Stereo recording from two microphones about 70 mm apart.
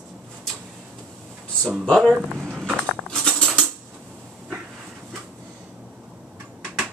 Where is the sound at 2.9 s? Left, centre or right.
Centre.